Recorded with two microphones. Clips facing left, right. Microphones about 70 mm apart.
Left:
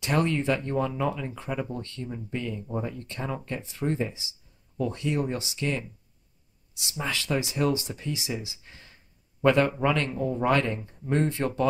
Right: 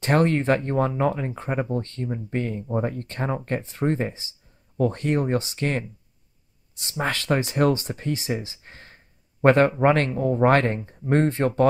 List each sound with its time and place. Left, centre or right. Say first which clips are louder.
0.0 s speech: right 5 dB; right